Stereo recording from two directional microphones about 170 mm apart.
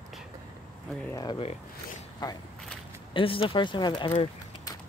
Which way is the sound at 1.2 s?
30° left (ahead or behind).